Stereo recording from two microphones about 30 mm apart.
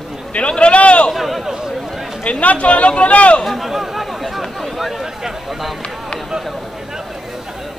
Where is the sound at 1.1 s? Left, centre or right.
Centre.